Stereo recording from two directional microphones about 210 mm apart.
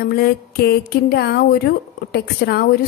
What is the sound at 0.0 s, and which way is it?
Speech, 50° left (ahead or behind).